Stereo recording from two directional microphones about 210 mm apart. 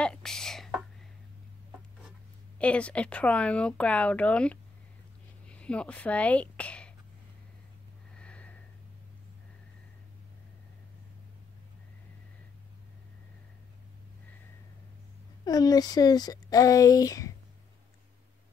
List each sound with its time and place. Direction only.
0.0 s a sound: 5° left (ahead or behind)
2.6 s speech: 5° left (ahead or behind)
8.2 s sniff: 5° left (ahead or behind)
15.4 s speech: 20° left (ahead or behind)